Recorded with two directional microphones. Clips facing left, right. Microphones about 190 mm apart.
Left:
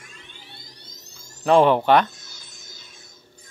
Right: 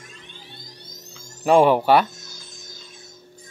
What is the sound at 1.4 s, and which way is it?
Speech, 10° right (ahead or behind).